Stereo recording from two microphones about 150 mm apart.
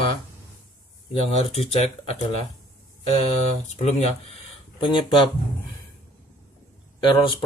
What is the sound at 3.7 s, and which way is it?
Speech, 50° left (ahead or behind).